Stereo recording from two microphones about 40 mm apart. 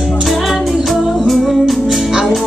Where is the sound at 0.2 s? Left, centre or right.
Centre.